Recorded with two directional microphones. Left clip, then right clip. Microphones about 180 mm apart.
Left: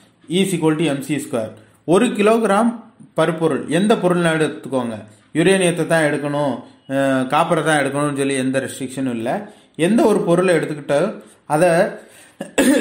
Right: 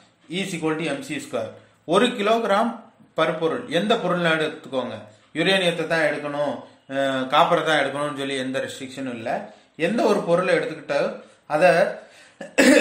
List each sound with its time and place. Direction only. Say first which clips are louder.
0.3 s speech: left 8 dB; 35° left (ahead or behind)